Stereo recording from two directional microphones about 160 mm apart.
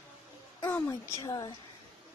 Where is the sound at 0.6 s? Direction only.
15° left (ahead or behind).